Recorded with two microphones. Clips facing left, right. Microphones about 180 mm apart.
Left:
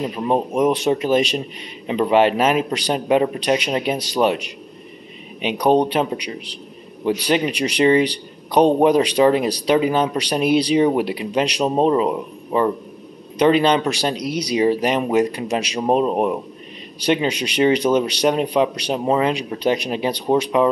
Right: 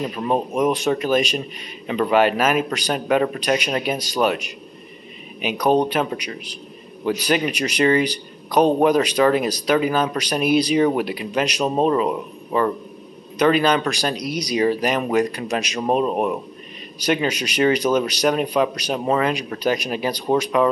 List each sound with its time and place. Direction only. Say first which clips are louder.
0.0 s speech: left 2 dB; 20° left (ahead or behind)
0.6 s speech: left 2 dB; 30° left (ahead or behind)